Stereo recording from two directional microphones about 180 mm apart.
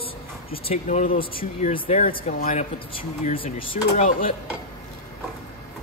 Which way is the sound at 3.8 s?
40° left (ahead or behind).